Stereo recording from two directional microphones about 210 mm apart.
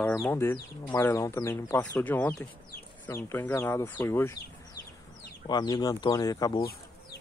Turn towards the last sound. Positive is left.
turn(degrees=20)  # may be behind; listen again after turning